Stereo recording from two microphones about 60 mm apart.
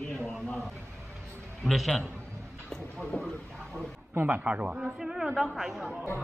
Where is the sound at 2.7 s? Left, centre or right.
Centre.